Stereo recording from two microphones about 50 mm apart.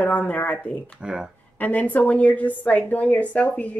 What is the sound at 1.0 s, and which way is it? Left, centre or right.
Speech, centre.